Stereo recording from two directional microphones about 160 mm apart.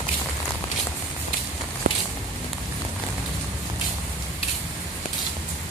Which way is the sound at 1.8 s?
60° right (ahead or behind).